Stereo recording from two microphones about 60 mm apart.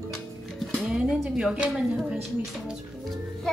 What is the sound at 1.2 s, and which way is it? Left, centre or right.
Speech, centre.